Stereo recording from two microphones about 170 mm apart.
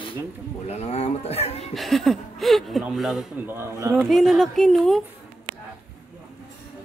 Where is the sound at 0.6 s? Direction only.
40° left (ahead or behind).